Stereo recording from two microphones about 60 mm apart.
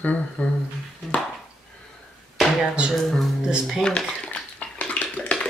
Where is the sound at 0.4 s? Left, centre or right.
Left.